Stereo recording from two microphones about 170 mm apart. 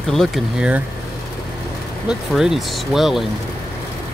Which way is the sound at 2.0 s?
Centre (ahead or behind).